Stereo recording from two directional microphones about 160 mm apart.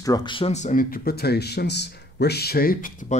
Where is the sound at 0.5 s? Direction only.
50° left (ahead or behind).